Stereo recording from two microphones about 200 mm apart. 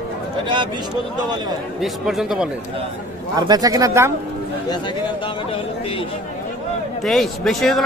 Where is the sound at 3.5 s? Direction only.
15° right (ahead or behind).